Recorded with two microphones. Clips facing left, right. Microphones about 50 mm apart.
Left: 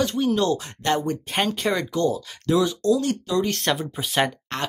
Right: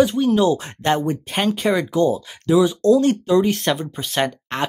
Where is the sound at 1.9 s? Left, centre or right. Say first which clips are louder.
Right 5 dB; centre.